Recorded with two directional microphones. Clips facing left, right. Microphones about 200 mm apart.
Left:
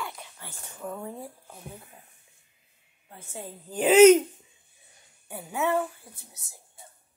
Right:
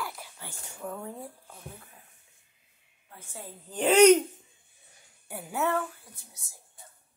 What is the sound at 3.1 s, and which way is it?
Speech, 25° left (ahead or behind).